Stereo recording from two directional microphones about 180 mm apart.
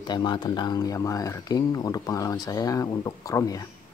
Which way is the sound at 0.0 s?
25° left (ahead or behind).